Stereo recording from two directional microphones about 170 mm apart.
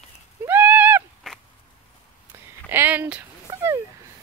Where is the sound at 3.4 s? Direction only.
20° right (ahead or behind).